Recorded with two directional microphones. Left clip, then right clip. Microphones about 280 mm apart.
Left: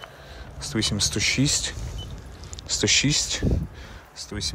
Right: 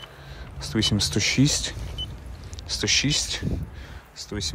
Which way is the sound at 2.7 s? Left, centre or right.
Centre.